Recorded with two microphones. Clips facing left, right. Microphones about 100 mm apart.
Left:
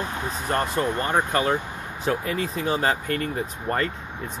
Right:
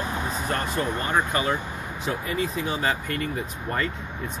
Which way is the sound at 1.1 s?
50° left (ahead or behind).